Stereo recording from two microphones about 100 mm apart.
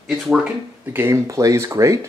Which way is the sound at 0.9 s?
30° right (ahead or behind).